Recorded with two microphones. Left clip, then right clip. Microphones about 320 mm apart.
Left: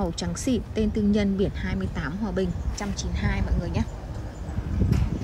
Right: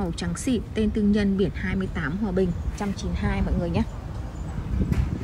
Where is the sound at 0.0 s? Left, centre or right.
Centre.